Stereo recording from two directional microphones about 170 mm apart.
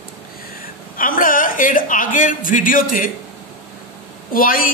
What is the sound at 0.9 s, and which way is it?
Speech, 55° left (ahead or behind).